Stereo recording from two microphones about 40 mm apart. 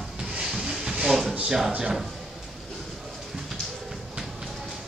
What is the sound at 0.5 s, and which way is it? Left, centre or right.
Hiss, centre.